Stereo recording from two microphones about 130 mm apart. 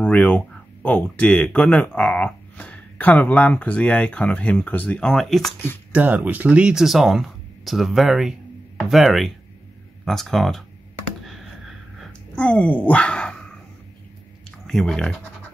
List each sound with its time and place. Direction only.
0.0 s speech: 10° left (ahead or behind)
5.9 s speech: 10° right (ahead or behind)
11.2 s a sound: centre (ahead or behind)
14.7 s speech: 5° left (ahead or behind)